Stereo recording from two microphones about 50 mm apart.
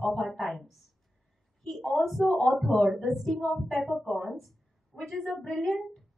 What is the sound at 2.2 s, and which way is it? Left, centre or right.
Speech, centre.